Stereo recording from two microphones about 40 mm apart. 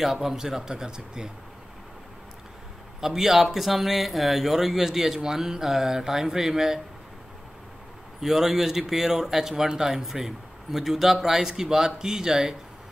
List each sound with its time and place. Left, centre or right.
0.0 s speech: centre
3.0 s speech: centre
8.2 s speech: centre